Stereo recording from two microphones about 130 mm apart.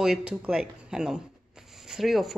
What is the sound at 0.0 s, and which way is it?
A woman's voice, 5° right (ahead or behind).